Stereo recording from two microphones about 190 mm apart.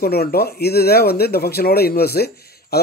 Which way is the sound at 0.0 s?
55° left (ahead or behind).